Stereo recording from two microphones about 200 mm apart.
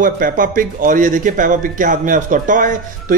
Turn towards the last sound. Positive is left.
turn(degrees=-40)  # may be behind; listen again after turning